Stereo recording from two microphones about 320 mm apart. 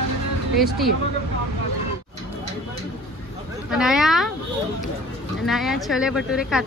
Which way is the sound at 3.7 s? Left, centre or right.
Centre.